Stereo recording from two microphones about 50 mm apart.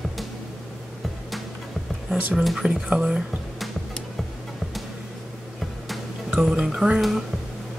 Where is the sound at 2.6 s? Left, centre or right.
Centre.